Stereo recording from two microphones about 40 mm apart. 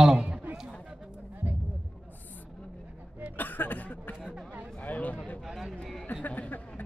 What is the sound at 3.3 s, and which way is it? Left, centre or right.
Chuckle, left.